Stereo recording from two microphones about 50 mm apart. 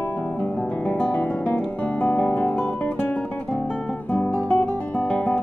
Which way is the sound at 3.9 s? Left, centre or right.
Left.